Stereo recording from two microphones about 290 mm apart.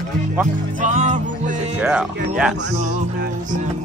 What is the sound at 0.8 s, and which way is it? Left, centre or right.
Music, right.